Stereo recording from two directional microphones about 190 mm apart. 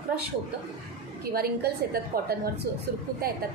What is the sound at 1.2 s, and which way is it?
A woman's voice, 55° right (ahead or behind).